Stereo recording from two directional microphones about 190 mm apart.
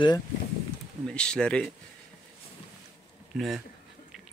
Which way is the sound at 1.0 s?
5° left (ahead or behind).